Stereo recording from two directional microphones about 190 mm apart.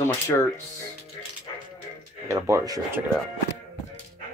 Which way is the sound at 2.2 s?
15° right (ahead or behind).